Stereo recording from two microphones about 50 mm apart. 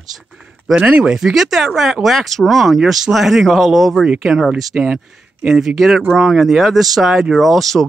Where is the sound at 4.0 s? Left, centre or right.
Centre.